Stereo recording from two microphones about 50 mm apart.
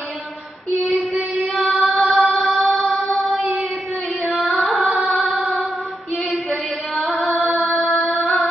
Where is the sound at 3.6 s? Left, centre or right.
Centre.